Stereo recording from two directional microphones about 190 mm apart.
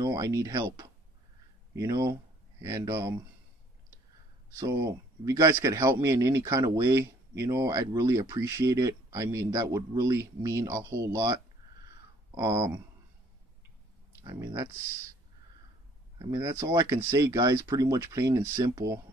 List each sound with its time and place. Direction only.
0.0 s a man's voice: 20° right (ahead or behind)
4.5 s a man's voice: 15° right (ahead or behind)
12.4 s speech: 20° right (ahead or behind)
14.2 s speech: 20° right (ahead or behind)
16.2 s a man's voice: 15° right (ahead or behind)